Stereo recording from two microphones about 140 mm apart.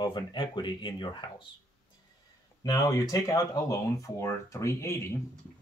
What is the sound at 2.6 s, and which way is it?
Speech, 25° left (ahead or behind).